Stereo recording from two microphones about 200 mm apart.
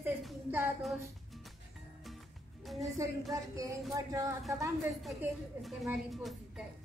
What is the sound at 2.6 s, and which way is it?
Music, centre (ahead or behind).